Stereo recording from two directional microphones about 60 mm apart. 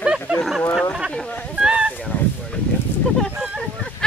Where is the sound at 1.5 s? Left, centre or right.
Centre.